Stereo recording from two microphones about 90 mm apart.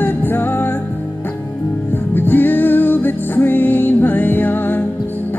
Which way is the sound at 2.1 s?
20° left (ahead or behind).